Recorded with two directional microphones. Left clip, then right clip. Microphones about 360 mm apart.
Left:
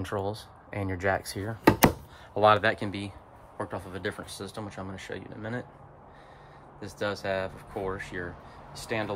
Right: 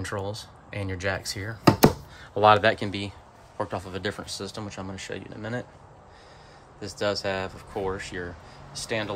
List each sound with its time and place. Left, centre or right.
0.0 s speech: centre
6.8 s speech: centre